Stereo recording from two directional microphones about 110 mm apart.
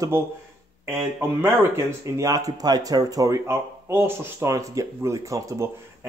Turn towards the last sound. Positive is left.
turn(degrees=-30)  # may be behind; listen again after turning